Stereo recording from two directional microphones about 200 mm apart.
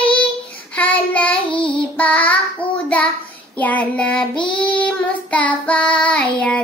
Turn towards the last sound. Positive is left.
turn(degrees=5)  # may be behind; listen again after turning